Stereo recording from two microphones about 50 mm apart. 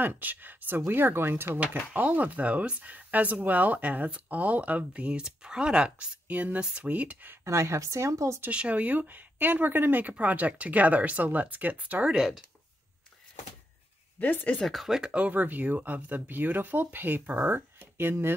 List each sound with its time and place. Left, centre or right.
0.0 s speech: right
2.0 s speech: right
5.2 s speech: centre
7.4 s speech: right
8.5 s speech: right
12.2 s speech: centre
14.2 s speech: left
14.6 s speech: centre
14.9 s speech: centre
15.1 s speech: right